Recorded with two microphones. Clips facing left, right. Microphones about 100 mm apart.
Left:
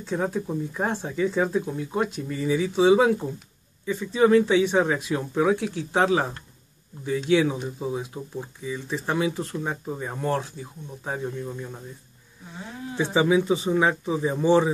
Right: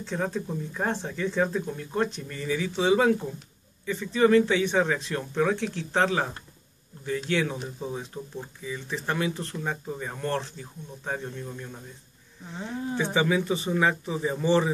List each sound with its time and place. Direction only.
0.0 s speech: 10° left (ahead or behind)
12.9 s speech: 15° left (ahead or behind)